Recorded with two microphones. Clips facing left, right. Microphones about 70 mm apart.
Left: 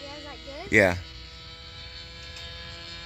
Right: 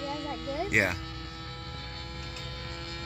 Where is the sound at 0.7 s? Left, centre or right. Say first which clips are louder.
Left 8 dB; left.